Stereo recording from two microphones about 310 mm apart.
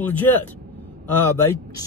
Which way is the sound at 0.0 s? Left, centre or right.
Centre.